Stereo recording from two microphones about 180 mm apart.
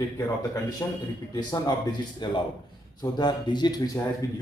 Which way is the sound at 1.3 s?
20° left (ahead or behind).